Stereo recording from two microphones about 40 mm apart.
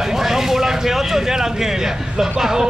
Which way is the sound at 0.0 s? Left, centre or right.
Centre.